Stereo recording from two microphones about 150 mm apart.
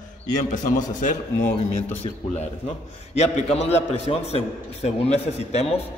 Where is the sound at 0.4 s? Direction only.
60° left (ahead or behind).